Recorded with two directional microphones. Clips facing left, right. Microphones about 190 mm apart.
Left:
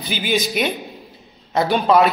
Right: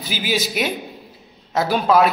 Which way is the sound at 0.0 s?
5° right (ahead or behind).